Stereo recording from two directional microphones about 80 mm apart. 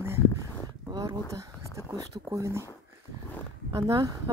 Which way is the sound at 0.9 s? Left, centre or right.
Right.